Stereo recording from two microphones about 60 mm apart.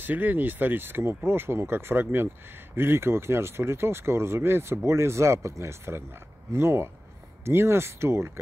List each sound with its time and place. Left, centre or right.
0.0 s speech: right